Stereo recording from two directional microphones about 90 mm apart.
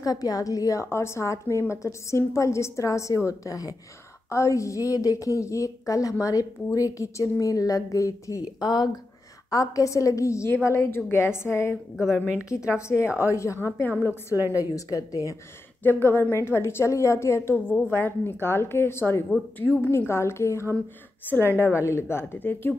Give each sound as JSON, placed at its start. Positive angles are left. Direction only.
{"t": 0.0, "sound": "a woman's voice", "side_deg": 45}
{"t": 9.5, "sound": "a woman's voice", "side_deg": 40}
{"t": 12.7, "sound": "a woman's voice", "side_deg": 30}
{"t": 14.5, "sound": "a woman's voice", "side_deg": 40}
{"t": 15.8, "sound": "a woman's voice", "side_deg": 25}